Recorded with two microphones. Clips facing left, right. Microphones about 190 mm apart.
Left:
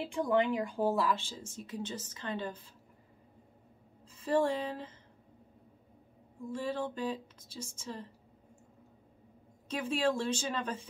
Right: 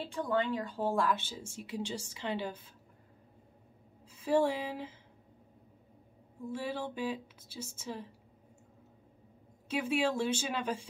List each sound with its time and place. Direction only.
0.1 s speech: 15° left (ahead or behind); by 2.5 s 10° right (ahead or behind)
4.1 s speech: 10° right (ahead or behind)
6.4 s speech: 5° right (ahead or behind)
9.7 s speech: 10° right (ahead or behind)